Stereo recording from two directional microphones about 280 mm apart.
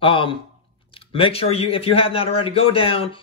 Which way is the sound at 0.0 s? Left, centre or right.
Centre.